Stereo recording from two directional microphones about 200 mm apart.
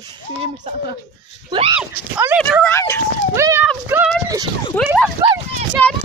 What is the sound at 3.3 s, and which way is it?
Speech, 15° right (ahead or behind).